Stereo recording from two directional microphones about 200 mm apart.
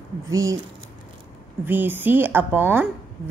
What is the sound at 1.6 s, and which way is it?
A woman's voice, 10° right (ahead or behind).